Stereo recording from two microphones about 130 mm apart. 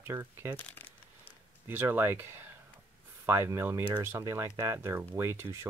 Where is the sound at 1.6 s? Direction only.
15° right (ahead or behind).